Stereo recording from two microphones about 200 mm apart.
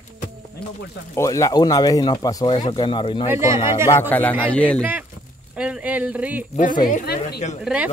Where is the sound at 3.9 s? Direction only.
10° left (ahead or behind).